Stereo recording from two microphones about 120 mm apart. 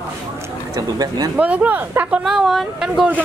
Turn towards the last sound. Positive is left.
turn(degrees=-5)  # may be behind; listen again after turning